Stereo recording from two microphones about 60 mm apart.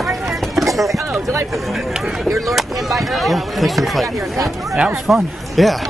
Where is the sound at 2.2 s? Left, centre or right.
Centre.